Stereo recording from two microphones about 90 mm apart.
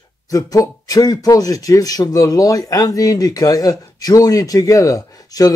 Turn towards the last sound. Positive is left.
turn(degrees=40)  # may be behind; listen again after turning